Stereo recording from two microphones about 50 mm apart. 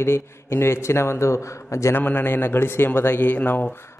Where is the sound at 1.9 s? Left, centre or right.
Left.